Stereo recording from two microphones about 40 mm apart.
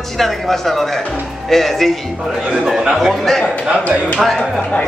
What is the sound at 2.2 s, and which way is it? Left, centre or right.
Speech, centre.